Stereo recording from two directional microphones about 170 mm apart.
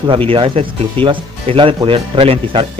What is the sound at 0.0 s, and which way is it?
Speech, 30° right (ahead or behind).